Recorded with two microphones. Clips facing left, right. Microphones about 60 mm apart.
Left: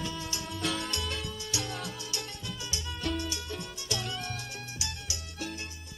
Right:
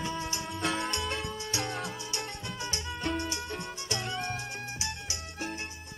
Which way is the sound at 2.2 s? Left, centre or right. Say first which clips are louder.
Right 3 dB; right.